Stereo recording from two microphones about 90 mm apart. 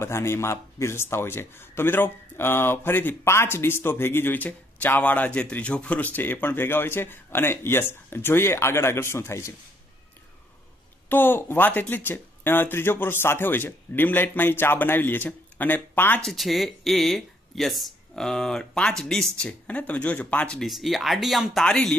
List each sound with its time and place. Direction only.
0.0 s speech: 30° left (ahead or behind)
11.1 s speech: 20° left (ahead or behind)
16.3 s speech: centre (ahead or behind)
20.6 s speech: centre (ahead or behind)